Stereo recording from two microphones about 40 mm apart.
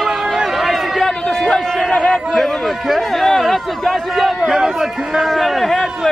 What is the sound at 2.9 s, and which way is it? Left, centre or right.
A man's voice, centre.